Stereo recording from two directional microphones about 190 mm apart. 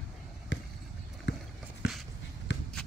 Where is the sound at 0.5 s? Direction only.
75° left (ahead or behind).